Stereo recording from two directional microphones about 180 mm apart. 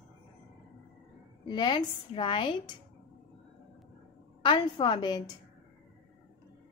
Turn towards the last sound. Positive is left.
turn(degrees=25)  # may be behind; listen again after turning